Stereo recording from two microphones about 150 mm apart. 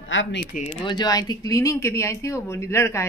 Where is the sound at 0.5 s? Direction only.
65° left (ahead or behind).